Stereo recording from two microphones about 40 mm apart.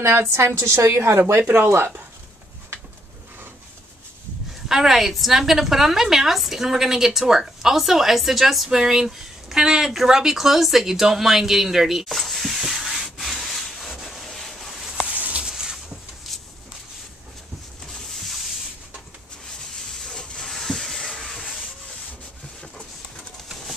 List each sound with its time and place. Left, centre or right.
0.0 s a woman's voice: right
4.6 s a woman's voice: centre
12.5 s rub: centre
14.2 s boat: centre
15.0 s a sound: right
15.4 s a sound: centre
17.9 s a sound: centre
19.9 s hiss: centre
21.3 s rub: centre